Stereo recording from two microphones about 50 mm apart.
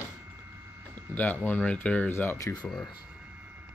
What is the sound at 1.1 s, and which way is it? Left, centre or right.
Speech, left.